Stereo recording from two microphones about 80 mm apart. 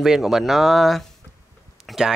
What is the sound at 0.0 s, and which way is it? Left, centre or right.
Speech, centre.